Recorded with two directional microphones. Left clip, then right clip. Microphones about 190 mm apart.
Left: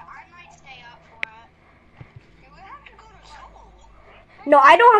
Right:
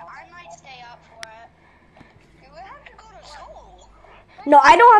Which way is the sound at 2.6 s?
55° right (ahead or behind).